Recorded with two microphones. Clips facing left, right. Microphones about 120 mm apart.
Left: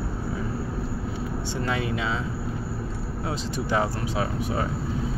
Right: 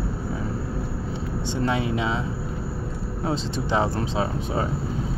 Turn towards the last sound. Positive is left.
turn(degrees=-25)  # may be behind; listen again after turning